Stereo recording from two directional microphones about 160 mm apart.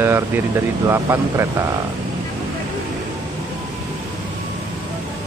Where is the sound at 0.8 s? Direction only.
15° right (ahead or behind).